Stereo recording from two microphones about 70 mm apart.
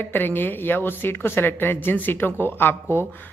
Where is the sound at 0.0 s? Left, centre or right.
Left.